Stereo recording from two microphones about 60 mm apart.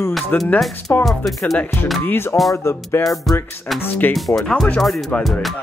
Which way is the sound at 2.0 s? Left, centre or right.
Left.